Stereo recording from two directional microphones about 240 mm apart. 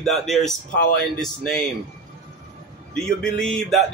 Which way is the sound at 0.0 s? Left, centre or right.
Centre.